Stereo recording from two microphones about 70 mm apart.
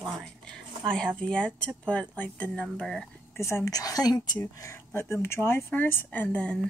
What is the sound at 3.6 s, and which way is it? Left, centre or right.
Speech, left.